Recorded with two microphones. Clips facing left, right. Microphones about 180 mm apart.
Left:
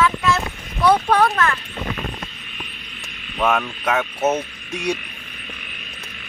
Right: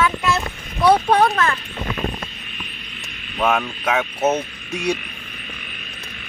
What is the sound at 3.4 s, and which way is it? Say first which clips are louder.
Speech: even; 5° right (ahead or behind).